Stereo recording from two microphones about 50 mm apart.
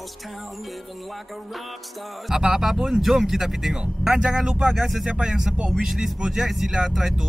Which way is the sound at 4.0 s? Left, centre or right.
Centre.